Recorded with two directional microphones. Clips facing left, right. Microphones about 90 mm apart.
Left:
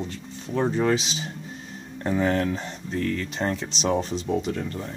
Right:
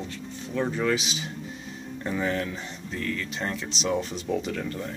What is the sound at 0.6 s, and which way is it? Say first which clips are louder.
Speech: left 3 dB; 35° left (ahead or behind).